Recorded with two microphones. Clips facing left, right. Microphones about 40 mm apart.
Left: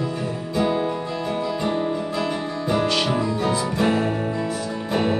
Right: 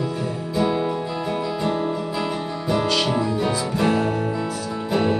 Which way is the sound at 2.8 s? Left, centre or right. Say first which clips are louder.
Right 1 dB; left.